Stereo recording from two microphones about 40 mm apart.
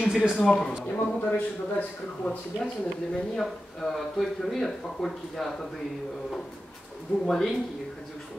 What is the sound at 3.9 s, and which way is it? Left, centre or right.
A man's voice, centre.